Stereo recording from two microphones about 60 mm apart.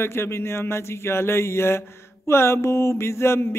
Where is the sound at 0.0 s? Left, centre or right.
Left.